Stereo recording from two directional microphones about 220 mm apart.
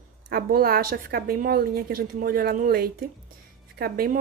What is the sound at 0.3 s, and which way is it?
A woman's voice, 45° right (ahead or behind).